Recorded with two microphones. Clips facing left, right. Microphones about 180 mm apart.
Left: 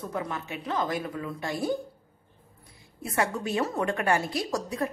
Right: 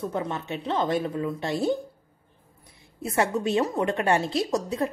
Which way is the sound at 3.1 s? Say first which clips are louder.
Right 4 dB; 25° right (ahead or behind).